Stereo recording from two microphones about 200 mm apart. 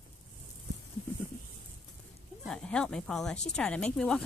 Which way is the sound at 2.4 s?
5° left (ahead or behind).